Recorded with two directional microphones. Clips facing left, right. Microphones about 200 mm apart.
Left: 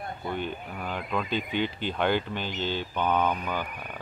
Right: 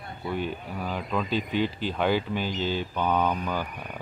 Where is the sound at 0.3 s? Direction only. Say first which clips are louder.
Right 3 dB; 5° right (ahead or behind).